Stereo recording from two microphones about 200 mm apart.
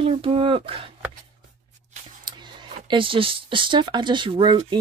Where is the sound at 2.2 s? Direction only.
25° right (ahead or behind).